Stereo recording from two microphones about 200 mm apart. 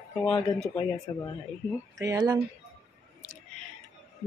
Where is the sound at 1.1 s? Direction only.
20° left (ahead or behind).